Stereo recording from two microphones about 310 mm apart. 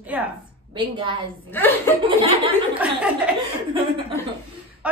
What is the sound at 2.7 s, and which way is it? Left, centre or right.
Speech, centre.